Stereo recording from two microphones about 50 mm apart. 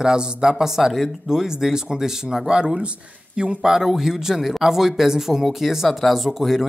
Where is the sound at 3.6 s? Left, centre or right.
Centre.